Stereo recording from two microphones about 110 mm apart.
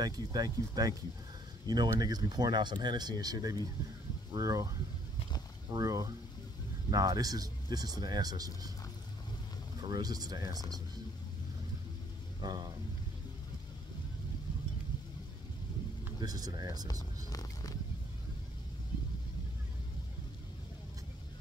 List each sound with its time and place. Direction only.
0.0 s speech: 35° right (ahead or behind)
9.8 s speech: 35° right (ahead or behind)
12.4 s speech: 40° right (ahead or behind)
16.2 s speech: 35° right (ahead or behind)
17.3 s vehicle: 35° left (ahead or behind)